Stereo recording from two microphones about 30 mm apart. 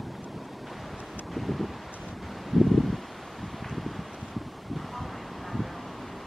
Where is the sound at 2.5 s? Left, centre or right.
Centre.